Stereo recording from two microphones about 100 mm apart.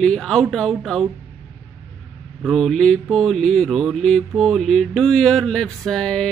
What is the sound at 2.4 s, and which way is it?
Mantra, 5° left (ahead or behind).